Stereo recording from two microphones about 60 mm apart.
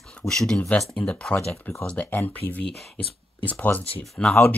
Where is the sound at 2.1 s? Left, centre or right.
Left.